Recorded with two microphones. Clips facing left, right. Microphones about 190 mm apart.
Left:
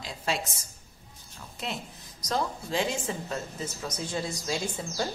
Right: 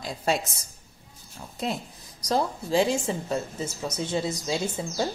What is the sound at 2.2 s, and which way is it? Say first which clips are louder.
A woman's voice: right 4 dB; 35° right (ahead or behind).